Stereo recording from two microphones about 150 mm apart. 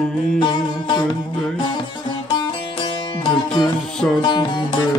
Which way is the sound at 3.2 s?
30° left (ahead or behind).